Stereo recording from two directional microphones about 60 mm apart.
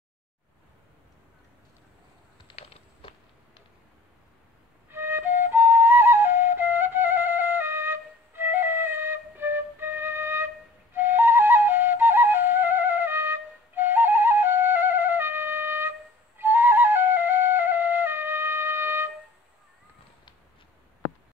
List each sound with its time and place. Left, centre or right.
4.9 s flute: right